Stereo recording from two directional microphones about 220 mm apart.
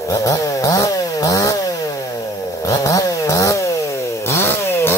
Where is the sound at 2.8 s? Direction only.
15° left (ahead or behind).